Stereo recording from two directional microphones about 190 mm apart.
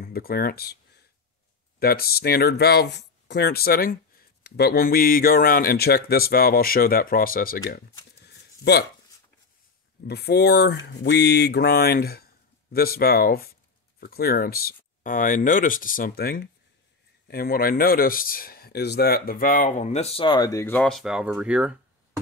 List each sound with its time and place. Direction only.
0.0 s speech: 50° left (ahead or behind)
10.0 s speech: 60° left (ahead or behind); by 21.7 s 5° right (ahead or behind)